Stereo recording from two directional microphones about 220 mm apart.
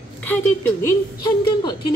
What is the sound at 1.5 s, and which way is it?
Speech, 20° left (ahead or behind).